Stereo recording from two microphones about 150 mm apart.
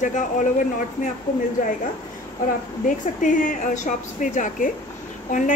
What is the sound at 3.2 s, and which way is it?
A woman's voice, 60° left (ahead or behind).